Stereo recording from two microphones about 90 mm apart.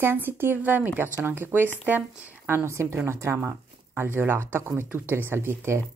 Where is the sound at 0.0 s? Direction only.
25° right (ahead or behind).